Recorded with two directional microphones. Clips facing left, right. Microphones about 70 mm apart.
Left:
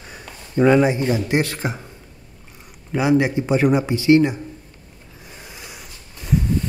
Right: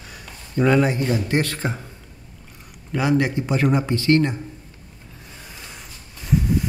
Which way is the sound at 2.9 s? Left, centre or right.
Centre.